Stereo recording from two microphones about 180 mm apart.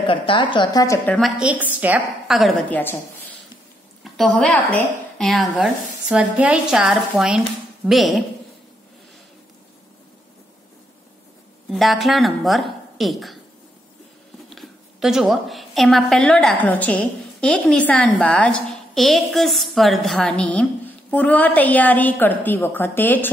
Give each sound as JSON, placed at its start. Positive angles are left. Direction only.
{"t": 0.0, "sound": "a woman's voice", "side_deg": 30}
{"t": 1.4, "sound": "a woman's voice", "side_deg": -10}
{"t": 4.0, "sound": "a woman's voice", "side_deg": 0}
{"t": 11.7, "sound": "a woman's voice", "side_deg": 0}
{"t": 14.5, "sound": "a woman's voice", "side_deg": 0}